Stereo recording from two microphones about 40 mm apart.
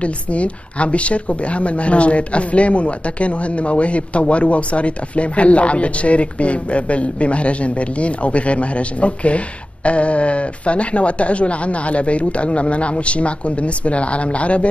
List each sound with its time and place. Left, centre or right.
0.0 s a woman's voice: left